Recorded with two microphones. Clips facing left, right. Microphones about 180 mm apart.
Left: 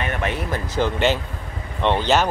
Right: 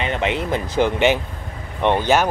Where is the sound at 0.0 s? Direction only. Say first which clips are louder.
Right 3 dB; 20° right (ahead or behind).